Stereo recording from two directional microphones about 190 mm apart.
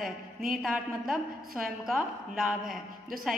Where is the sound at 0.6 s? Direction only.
Centre (ahead or behind).